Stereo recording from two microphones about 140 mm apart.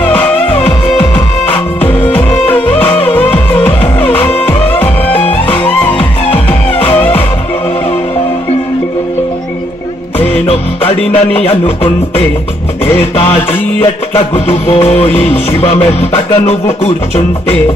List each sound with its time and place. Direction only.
0.0 s music: 10° left (ahead or behind)
10.1 s music: 10° left (ahead or behind)
11.4 s music: 45° left (ahead or behind)
14.1 s music: 20° left (ahead or behind)
14.7 s music: 50° left (ahead or behind)